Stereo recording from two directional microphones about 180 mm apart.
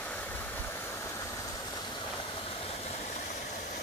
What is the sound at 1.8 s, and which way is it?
Vehicle, 25° left (ahead or behind).